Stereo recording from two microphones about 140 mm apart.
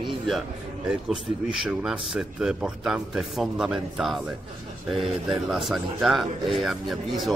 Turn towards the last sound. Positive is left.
turn(degrees=0)  # may be behind; listen again after turning